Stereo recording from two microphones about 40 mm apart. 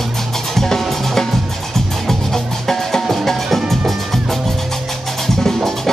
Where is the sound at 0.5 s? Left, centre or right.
Centre.